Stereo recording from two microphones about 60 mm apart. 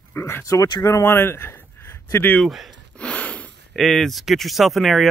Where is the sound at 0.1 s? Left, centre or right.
Left.